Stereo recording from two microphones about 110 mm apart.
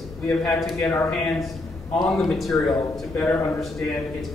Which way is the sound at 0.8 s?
25° left (ahead or behind).